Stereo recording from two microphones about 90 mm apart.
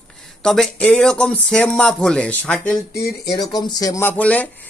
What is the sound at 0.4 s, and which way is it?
Speech, 5° left (ahead or behind).